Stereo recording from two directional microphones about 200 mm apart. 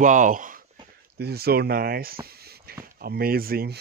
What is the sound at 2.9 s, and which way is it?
Speech, 50° right (ahead or behind).